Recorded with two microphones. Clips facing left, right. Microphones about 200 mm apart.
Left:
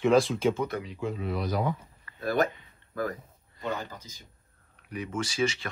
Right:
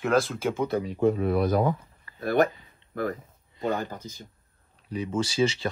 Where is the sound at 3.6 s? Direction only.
55° right (ahead or behind).